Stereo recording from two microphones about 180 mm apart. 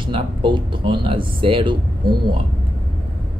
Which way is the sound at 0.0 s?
25° right (ahead or behind).